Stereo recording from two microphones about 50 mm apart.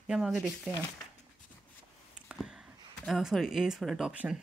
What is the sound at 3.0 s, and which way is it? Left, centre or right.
Speech, centre.